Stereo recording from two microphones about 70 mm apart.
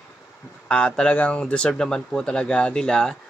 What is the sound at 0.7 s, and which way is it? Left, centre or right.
Speech, centre.